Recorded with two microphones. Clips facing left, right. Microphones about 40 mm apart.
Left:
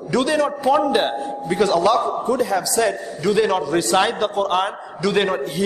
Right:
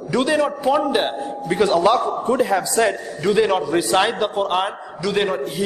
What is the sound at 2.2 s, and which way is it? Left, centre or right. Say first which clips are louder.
Speech: right 1 dB; right.